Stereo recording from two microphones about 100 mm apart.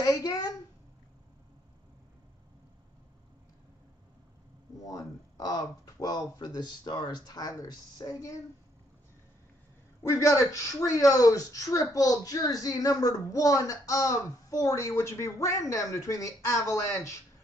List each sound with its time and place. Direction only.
0.0 s speech: 35° left (ahead or behind)
4.8 s speech: 35° left (ahead or behind)
10.0 s speech: 30° left (ahead or behind)